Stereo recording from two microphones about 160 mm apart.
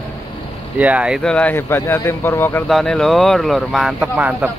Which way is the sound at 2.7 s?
Centre (ahead or behind).